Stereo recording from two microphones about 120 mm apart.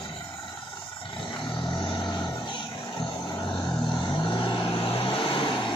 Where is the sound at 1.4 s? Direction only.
40° left (ahead or behind).